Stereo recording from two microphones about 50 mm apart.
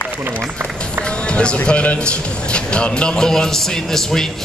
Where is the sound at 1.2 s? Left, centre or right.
Left.